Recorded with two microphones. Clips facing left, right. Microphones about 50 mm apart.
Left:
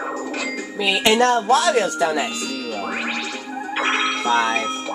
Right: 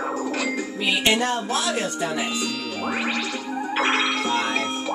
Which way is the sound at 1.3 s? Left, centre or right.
Left.